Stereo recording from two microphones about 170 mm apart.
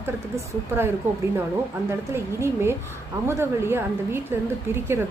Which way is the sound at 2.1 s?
15° right (ahead or behind).